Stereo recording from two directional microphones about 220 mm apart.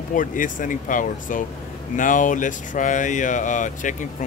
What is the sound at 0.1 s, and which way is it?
Speech, 35° left (ahead or behind).